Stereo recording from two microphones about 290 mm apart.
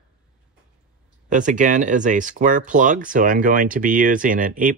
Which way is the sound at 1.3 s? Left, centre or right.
Right.